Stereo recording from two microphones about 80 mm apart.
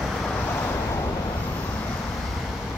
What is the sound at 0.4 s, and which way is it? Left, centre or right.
Vehicle, left.